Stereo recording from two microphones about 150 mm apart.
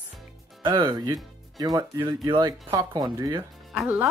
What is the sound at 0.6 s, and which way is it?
Speech, 30° right (ahead or behind).